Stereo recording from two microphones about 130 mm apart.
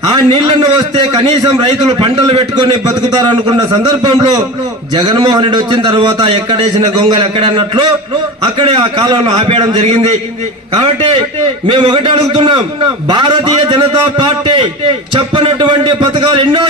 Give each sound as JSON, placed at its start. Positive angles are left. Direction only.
{"t": 0.1, "sound": "a man's voice", "side_deg": -30}
{"t": 2.9, "sound": "a man's voice", "side_deg": -30}
{"t": 11.6, "sound": "a man's voice", "side_deg": -40}